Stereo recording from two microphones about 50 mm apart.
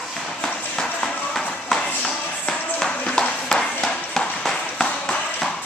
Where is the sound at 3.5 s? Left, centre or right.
Centre.